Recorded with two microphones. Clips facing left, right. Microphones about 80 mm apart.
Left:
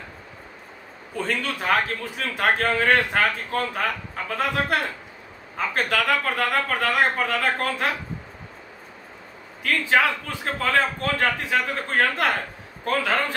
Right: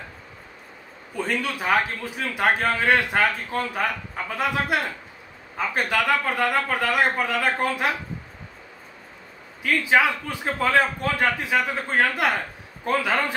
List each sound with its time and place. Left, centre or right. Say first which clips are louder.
1.1 s a man's voice: even; centre
5.8 s a man's voice: even; centre
9.6 s a man's voice: right 1 dB; centre